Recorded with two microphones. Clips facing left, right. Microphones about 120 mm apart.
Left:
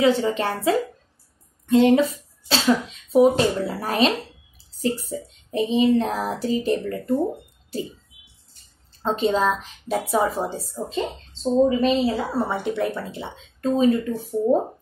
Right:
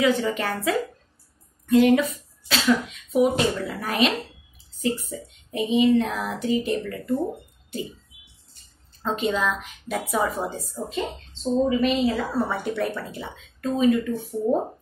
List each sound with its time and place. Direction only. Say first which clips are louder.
0.0 s speech: left 3 dB; 30° left (ahead or behind)
7.7 s a sound: left 3 dB; 35° left (ahead or behind)
9.0 s speech: left 4 dB; 30° left (ahead or behind)